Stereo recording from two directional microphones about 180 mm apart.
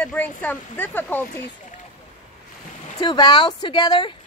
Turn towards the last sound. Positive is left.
turn(degrees=25)  # may be behind; listen again after turning